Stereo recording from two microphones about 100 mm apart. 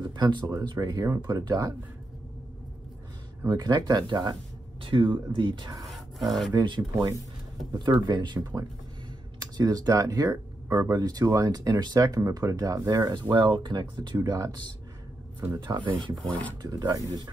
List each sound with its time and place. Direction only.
0.0 s a sound: 50° right (ahead or behind)
0.7 s speech: 35° right (ahead or behind)
1.2 s speech: 45° right (ahead or behind)
3.4 s speech: 40° right (ahead or behind)
4.8 s speech: 60° right (ahead or behind)
5.9 s a sound: centre (ahead or behind)
6.5 s speech: 50° right (ahead or behind); by 13.1 s 35° right (ahead or behind)
13.1 s speech: 50° right (ahead or behind)
14.1 s speech: 40° right (ahead or behind)
16.3 s speech: 15° left (ahead or behind)
16.6 s speech: 35° right (ahead or behind)